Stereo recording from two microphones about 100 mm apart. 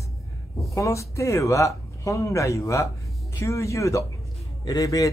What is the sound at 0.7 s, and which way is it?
Speech, 30° left (ahead or behind).